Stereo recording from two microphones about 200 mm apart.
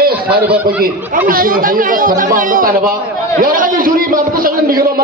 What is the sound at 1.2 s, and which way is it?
A man's voice, 45° right (ahead or behind).